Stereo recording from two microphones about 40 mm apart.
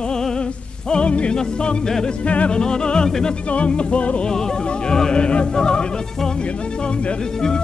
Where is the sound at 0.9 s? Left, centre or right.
Left.